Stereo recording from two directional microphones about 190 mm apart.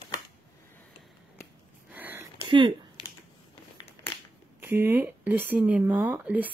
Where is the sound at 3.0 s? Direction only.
25° left (ahead or behind).